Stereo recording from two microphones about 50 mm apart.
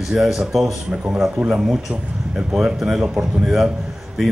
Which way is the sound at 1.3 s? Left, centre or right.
Right.